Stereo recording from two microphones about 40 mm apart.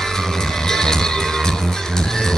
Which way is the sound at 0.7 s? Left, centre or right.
Centre.